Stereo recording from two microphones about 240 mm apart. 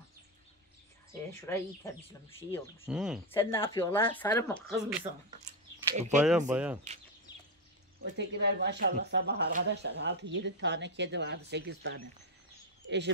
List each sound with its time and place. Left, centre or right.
1.3 s speech: centre
2.9 s speech: centre
3.3 s speech: centre
4.8 s speech: centre
6.1 s speech: centre
8.0 s speech: right